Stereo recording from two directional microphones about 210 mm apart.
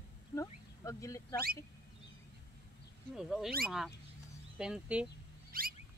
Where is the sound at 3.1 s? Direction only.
Centre (ahead or behind).